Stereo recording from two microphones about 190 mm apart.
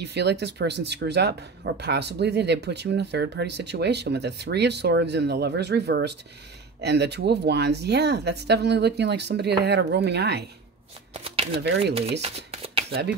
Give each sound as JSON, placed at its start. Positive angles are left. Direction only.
{"t": 0.0, "sound": "speech", "side_deg": -60}
{"t": 11.2, "sound": "shuffling cards", "side_deg": -30}
{"t": 11.8, "sound": "speech", "side_deg": -30}